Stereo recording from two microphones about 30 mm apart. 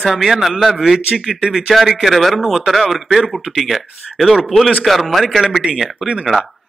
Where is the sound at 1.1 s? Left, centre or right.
Right.